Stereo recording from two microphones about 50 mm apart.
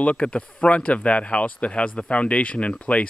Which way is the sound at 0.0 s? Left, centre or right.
Left.